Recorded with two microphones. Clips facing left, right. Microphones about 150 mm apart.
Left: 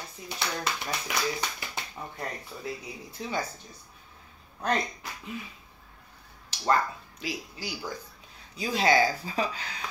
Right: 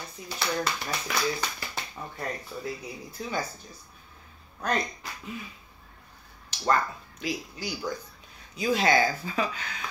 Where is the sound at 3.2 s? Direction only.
25° left (ahead or behind).